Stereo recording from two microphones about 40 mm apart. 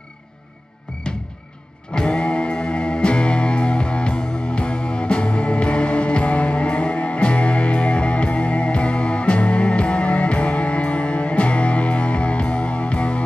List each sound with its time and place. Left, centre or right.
2.0 s music: left